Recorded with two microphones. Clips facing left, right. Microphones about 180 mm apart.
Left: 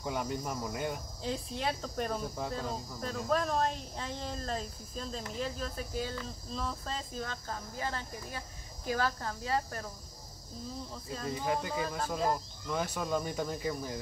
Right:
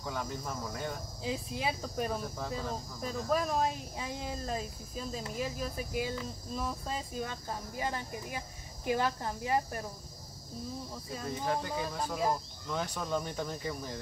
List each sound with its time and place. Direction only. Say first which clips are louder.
0.0 s speech: left 3 dB; 15° left (ahead or behind)
1.2 s speech: even; 5° right (ahead or behind)
10.9 s speech: even; 10° right (ahead or behind)
11.2 s speech: left 1 dB; 5° left (ahead or behind)